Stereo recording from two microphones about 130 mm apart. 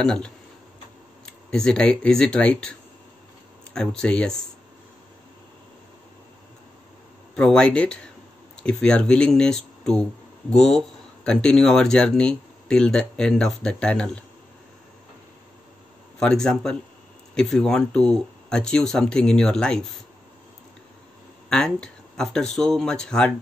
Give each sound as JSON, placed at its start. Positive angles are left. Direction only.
{"t": 0.0, "sound": "speech", "side_deg": 5}
{"t": 1.5, "sound": "speech", "side_deg": 5}
{"t": 3.7, "sound": "speech", "side_deg": 5}
{"t": 7.3, "sound": "speech", "side_deg": 5}
{"t": 16.2, "sound": "speech", "side_deg": 5}
{"t": 21.5, "sound": "speech", "side_deg": 5}